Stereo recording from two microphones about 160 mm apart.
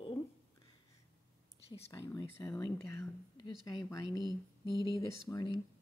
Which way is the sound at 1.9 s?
20° left (ahead or behind).